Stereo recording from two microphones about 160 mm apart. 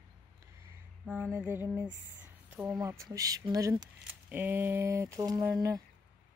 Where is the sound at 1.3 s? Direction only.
15° right (ahead or behind).